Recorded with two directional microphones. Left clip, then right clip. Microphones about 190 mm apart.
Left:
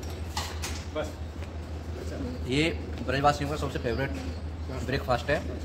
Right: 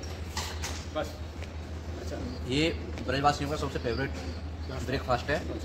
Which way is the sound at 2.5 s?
5° left (ahead or behind).